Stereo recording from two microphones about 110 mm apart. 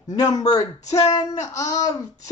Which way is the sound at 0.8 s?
90° left.